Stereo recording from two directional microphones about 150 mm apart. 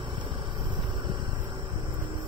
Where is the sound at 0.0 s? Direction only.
30° right (ahead or behind).